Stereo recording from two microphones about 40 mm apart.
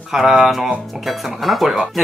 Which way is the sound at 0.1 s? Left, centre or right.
Centre.